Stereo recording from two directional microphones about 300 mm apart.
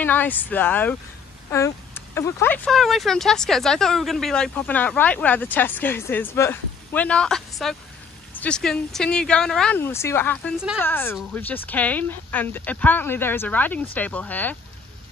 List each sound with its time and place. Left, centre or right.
0.0 s speech: centre